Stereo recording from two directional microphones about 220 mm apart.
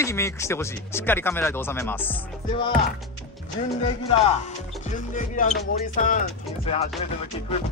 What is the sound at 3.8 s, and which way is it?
Speech, 30° left (ahead or behind).